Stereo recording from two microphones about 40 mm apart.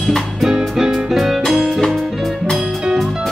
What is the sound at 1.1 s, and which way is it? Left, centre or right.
Music, centre.